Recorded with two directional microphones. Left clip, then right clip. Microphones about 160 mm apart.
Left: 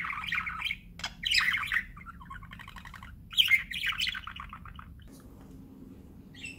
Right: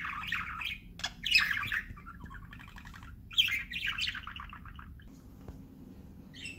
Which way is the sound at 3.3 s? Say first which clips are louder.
Left 5 dB; 25° left (ahead or behind).